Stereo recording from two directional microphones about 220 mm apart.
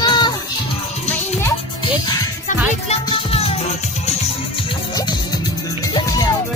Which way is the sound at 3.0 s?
25° left (ahead or behind).